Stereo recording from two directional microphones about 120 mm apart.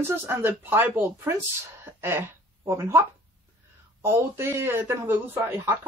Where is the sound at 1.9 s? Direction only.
20° right (ahead or behind).